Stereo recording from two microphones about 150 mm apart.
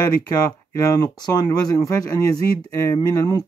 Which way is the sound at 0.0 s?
25° left (ahead or behind).